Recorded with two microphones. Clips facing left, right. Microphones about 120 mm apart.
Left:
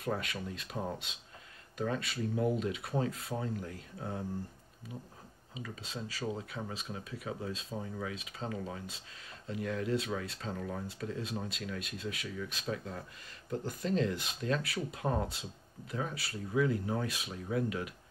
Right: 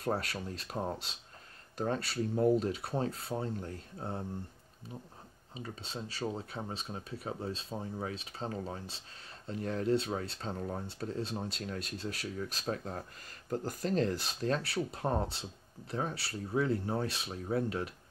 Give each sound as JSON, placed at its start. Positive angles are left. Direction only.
{"t": 0.0, "sound": "speech", "side_deg": -35}
{"t": 5.5, "sound": "speech", "side_deg": -30}